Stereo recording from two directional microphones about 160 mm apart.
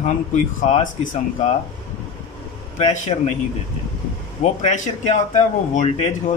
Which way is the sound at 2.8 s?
50° left (ahead or behind).